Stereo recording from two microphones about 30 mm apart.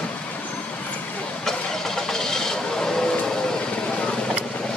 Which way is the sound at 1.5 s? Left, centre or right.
Centre.